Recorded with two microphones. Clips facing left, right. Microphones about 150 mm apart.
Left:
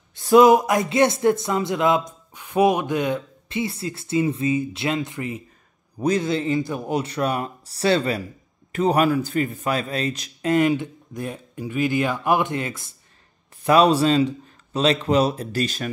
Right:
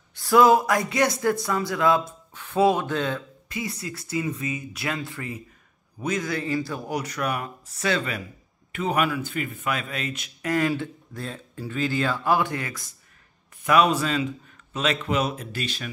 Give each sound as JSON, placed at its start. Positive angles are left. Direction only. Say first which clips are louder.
{"t": 0.1, "sound": "speech", "louder": "left 4 dB", "side_deg": 20}
{"t": 5.9, "sound": "a man's voice", "louder": "left 6 dB", "side_deg": 35}
{"t": 10.5, "sound": "a man's voice", "louder": "left 5 dB", "side_deg": 20}